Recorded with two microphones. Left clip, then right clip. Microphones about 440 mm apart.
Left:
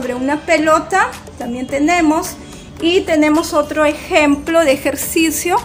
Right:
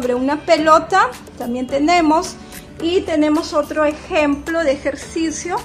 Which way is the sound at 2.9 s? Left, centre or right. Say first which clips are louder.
Left 3 dB; right.